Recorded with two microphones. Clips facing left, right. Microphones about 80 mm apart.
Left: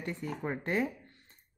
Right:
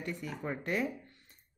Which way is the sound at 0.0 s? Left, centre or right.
Left.